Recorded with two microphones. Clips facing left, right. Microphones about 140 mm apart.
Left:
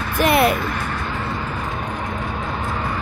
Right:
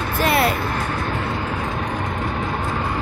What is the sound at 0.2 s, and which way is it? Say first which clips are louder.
Vehicle: left 3 dB; 20° left (ahead or behind).